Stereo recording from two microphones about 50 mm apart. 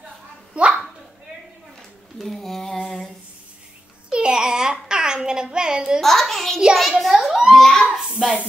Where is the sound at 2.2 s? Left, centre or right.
Centre.